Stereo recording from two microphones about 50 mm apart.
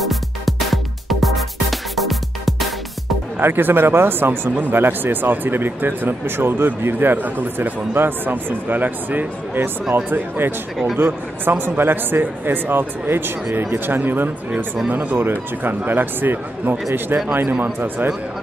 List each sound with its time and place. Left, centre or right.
0.0 s music: centre
3.3 s speech: right